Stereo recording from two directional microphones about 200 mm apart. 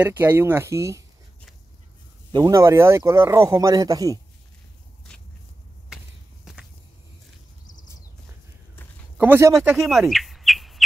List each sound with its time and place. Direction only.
0.0 s speech: 10° right (ahead or behind)
2.3 s speech: 15° right (ahead or behind)
9.2 s speech: 10° right (ahead or behind)
9.6 s bird: centre (ahead or behind)